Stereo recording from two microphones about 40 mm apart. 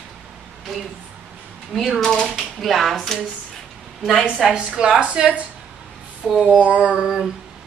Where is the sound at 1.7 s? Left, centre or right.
Centre.